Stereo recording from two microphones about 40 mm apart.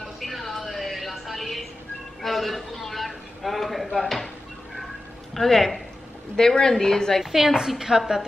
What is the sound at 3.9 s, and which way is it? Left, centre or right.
Speech, centre.